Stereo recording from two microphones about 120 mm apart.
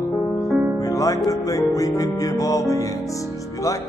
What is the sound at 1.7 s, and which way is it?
Music, 30° left (ahead or behind).